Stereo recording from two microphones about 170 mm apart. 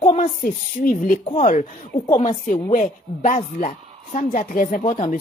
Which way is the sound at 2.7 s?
50° left (ahead or behind).